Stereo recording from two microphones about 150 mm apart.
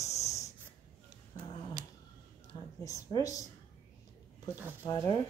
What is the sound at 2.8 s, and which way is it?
Speech, 25° left (ahead or behind).